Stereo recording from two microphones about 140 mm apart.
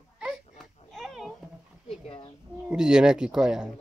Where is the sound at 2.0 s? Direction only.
35° left (ahead or behind).